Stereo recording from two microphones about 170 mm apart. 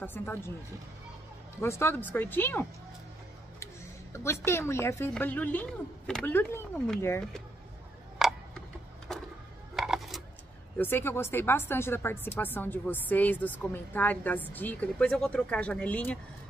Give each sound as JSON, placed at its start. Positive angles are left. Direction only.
{"t": 0.0, "sound": "speech", "side_deg": 10}
{"t": 1.6, "sound": "speech", "side_deg": 15}
{"t": 4.1, "sound": "a woman's voice", "side_deg": 15}
{"t": 8.2, "sound": "tick-tock", "side_deg": 0}
{"t": 9.1, "sound": "vehicle", "side_deg": 0}
{"t": 9.8, "sound": "coin", "side_deg": 0}
{"t": 10.8, "sound": "speech", "side_deg": 10}